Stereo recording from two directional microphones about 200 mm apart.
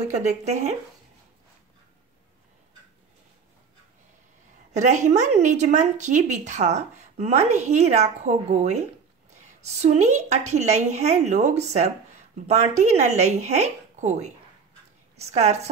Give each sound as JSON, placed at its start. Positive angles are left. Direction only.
{"t": 0.3, "sound": "a woman's voice", "side_deg": -35}
{"t": 4.7, "sound": "a woman's voice", "side_deg": -35}